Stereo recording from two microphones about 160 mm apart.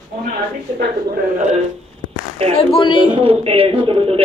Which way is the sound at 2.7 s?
30° left (ahead or behind).